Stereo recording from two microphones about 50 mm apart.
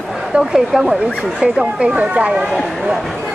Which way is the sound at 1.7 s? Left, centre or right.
Right.